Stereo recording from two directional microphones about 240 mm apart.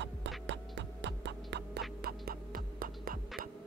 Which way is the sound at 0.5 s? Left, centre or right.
Right.